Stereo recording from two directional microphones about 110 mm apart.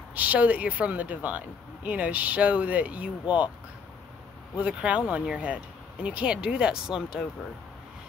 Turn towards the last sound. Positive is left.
turn(degrees=-5)  # may be behind; listen again after turning